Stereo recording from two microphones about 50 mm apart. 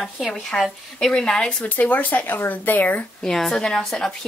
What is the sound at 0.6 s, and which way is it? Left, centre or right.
A woman's voice, centre.